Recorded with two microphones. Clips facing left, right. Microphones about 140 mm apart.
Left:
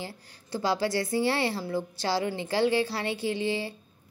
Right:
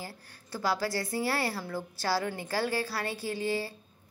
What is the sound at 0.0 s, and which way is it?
A woman's voice, 25° left (ahead or behind).